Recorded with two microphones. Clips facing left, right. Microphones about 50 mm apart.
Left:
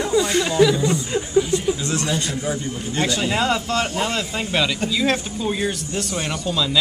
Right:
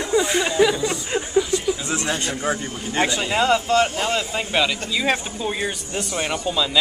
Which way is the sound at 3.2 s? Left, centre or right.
Centre.